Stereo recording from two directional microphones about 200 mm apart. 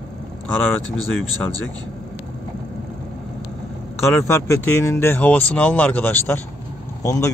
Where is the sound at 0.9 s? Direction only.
90° left.